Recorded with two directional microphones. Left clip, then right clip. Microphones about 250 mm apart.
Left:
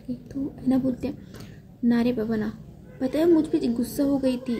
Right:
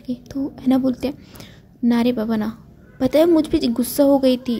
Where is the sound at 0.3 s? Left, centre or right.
Right.